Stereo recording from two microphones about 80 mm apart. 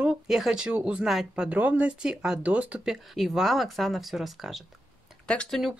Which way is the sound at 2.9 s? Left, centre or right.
Centre.